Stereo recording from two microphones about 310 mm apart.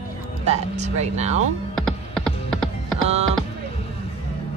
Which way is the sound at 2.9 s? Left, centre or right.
Centre.